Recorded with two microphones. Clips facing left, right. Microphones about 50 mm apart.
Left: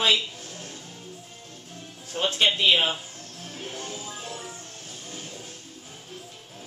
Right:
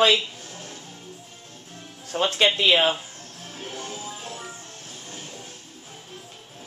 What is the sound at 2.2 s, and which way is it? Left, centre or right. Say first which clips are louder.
Speech: right 2 dB; right.